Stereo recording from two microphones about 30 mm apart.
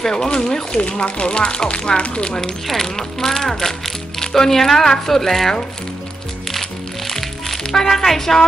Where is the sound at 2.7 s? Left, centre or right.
Centre.